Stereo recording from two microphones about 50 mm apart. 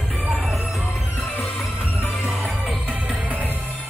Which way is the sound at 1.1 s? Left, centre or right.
Left.